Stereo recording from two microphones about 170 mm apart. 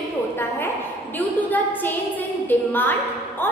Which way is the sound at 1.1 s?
10° left (ahead or behind).